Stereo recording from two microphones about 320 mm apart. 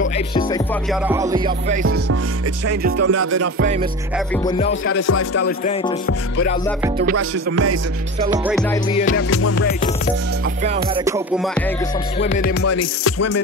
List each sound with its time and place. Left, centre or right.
0.3 s music: centre
1.0 s music: centre
3.0 s music: right
4.5 s music: centre
4.8 s music: left
7.2 s music: right
9.1 s music: left
11.1 s music: centre
12.2 s music: left
12.6 s music: left